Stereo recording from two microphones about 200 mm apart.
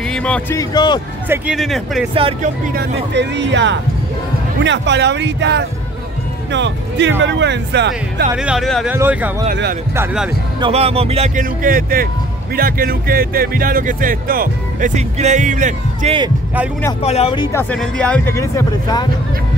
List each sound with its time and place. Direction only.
0.1 s speech: 5° left (ahead or behind)
1.3 s speech: 5° right (ahead or behind)
2.4 s speech: 50° right (ahead or behind)
8.4 s speech: centre (ahead or behind)
10.6 s speech: 30° right (ahead or behind)
17.0 s speech: 30° left (ahead or behind)
17.5 s speech: 10° left (ahead or behind)